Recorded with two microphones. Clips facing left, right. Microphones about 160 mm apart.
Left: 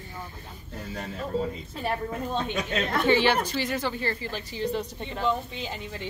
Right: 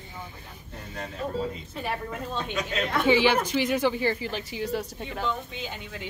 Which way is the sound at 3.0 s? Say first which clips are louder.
Right 1 dB; 15° right (ahead or behind).